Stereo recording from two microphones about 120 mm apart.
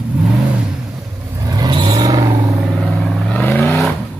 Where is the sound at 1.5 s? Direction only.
35° right (ahead or behind).